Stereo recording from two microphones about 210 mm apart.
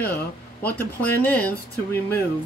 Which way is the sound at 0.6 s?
10° left (ahead or behind).